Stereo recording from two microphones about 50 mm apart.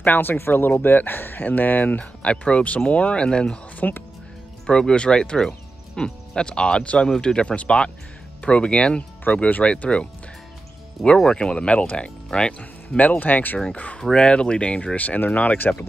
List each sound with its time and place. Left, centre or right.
0.0 s speech: left
2.2 s speech: left
3.7 s speech: left
4.6 s speech: centre
11.2 s speech: centre; by 13.6 s left
14.1 s speech: centre